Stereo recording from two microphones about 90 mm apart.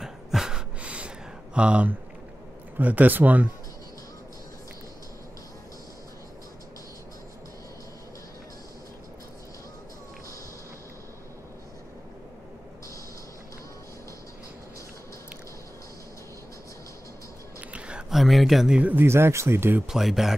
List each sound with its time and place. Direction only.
0.0 s a sound: 5° right (ahead or behind)
2.8 s speech: 15° right (ahead or behind)
17.6 s whispering: 10° right (ahead or behind)
18.1 s speech: centre (ahead or behind)
18.8 s speech: 15° right (ahead or behind)
19.0 s speech: 30° right (ahead or behind)
19.9 s speech: 5° right (ahead or behind)